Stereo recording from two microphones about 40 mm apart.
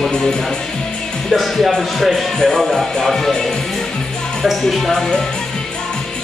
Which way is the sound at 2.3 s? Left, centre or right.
Centre.